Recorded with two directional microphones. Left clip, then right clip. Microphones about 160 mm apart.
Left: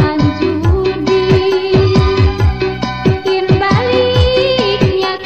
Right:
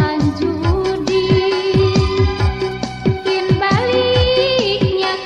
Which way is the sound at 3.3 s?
30° left (ahead or behind).